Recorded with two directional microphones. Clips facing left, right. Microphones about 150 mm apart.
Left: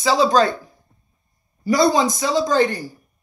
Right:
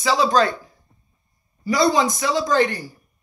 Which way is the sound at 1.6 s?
45° left (ahead or behind).